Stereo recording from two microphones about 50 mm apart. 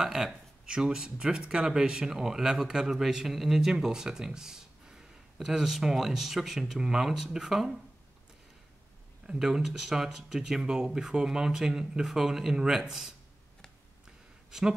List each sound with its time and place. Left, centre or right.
0.0 s speech: centre
9.2 s speech: centre
12.1 s speech: centre
14.5 s speech: centre